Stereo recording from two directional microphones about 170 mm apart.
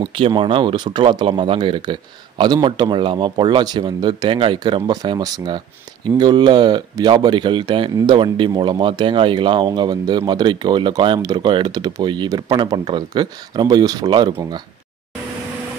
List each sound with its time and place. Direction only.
0.0 s speech: 30° right (ahead or behind)